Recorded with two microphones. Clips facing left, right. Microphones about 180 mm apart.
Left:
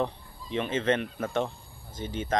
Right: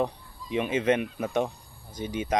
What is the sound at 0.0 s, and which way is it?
Speech, 10° right (ahead or behind).